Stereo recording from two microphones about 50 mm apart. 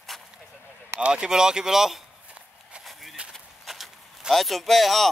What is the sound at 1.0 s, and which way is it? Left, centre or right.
Speech, centre.